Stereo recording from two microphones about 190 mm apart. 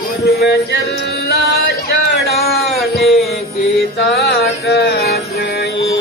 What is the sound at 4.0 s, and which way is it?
Mantra, 55° left (ahead or behind).